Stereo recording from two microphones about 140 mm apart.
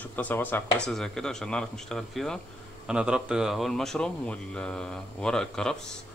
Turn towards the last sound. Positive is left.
turn(degrees=5)  # may be behind; listen again after turning